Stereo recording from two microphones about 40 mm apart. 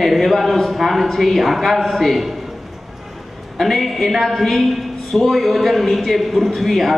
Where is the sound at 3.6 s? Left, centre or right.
Centre.